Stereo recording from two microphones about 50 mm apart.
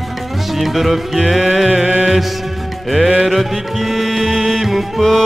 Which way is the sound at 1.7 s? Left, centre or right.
Right.